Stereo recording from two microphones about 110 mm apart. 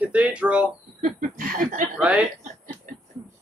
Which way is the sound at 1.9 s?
15° right (ahead or behind).